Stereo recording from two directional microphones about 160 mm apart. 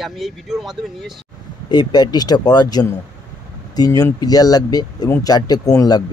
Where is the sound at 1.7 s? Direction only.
25° left (ahead or behind).